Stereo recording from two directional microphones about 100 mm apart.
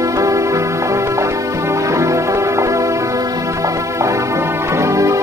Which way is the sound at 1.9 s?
30° right (ahead or behind).